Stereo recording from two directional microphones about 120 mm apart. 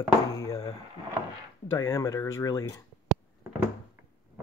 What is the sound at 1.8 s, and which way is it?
Speech, 25° left (ahead or behind).